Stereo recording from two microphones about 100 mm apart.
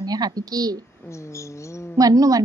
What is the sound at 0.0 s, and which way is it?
Speech, 40° right (ahead or behind).